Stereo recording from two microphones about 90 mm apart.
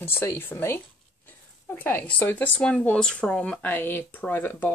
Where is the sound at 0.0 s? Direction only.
30° left (ahead or behind).